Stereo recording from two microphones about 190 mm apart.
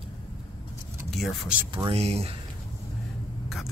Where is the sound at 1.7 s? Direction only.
30° right (ahead or behind).